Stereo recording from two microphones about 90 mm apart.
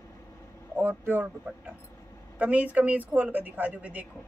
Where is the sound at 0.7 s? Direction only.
20° right (ahead or behind).